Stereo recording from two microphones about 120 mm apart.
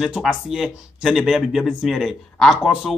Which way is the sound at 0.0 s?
5° right (ahead or behind).